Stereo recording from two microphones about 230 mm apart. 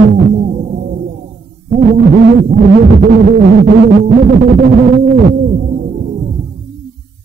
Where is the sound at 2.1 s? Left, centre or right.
Right.